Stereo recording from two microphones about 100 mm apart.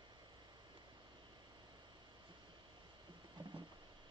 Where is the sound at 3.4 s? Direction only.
50° right (ahead or behind).